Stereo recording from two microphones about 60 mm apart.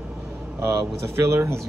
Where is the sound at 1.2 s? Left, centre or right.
Right.